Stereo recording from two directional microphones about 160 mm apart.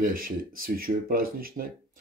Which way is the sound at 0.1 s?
65° right (ahead or behind).